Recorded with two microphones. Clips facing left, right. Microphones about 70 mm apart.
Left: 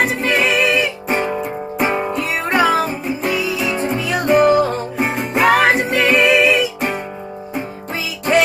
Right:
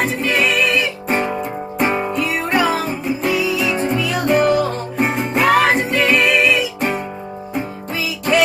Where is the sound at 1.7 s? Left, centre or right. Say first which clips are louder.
Even; centre.